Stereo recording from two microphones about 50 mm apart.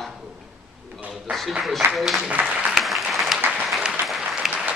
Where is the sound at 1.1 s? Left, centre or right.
Centre.